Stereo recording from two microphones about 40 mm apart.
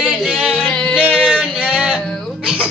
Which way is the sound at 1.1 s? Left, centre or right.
Centre.